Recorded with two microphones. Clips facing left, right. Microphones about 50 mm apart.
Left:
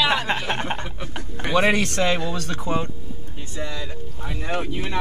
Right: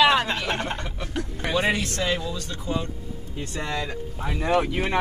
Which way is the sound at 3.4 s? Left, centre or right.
Right.